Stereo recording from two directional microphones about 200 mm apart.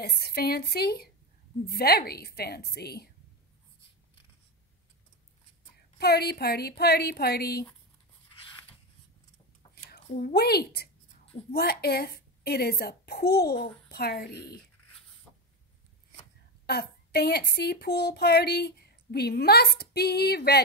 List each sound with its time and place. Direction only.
0.0 s speech: 55° left (ahead or behind)
5.9 s speech: 55° left (ahead or behind)
10.0 s a woman's voice: 45° left (ahead or behind)
16.6 s speech: 55° left (ahead or behind)